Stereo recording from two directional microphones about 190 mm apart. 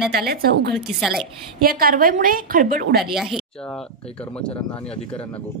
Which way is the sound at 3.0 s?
Centre (ahead or behind).